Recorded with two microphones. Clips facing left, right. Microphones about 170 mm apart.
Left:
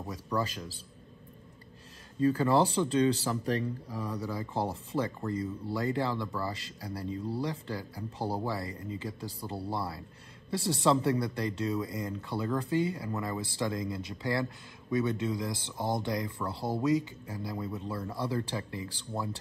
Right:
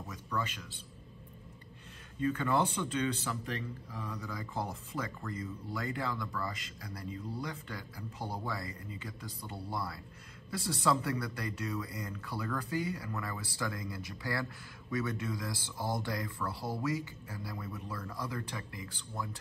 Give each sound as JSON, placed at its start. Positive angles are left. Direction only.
{"t": 0.0, "sound": "a man's voice", "side_deg": 35}
{"t": 2.1, "sound": "speech", "side_deg": 35}